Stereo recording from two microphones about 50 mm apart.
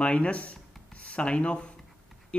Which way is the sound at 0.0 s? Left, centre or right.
Left.